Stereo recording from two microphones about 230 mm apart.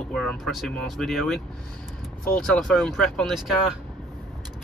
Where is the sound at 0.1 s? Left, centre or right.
Centre.